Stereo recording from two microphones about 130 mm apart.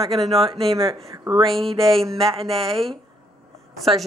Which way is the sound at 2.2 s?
45° right (ahead or behind).